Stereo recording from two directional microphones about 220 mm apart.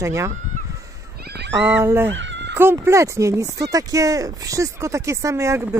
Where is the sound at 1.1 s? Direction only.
45° right (ahead or behind).